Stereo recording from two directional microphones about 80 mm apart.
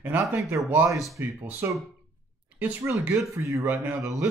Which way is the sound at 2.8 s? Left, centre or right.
Right.